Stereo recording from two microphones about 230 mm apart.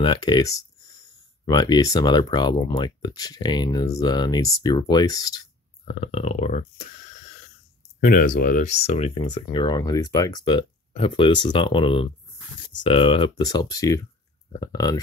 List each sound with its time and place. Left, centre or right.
0.0 s speech: centre
5.9 s speech: left
8.0 s speech: left; by 15.0 s centre